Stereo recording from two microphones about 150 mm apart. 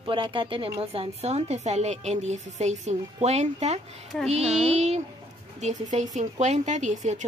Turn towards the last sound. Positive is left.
turn(degrees=-55)  # may be behind; listen again after turning